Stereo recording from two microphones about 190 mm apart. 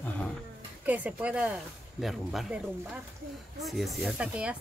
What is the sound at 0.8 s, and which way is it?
Speech, 10° right (ahead or behind).